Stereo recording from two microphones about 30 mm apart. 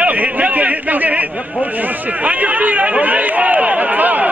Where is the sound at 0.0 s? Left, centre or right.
Right.